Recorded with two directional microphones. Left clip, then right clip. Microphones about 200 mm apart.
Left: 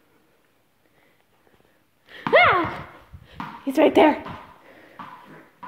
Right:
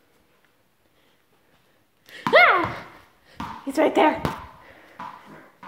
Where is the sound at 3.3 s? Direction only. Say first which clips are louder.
Left 2 dB; 25° left (ahead or behind).